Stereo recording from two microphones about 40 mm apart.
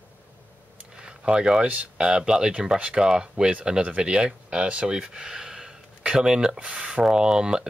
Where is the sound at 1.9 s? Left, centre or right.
Right.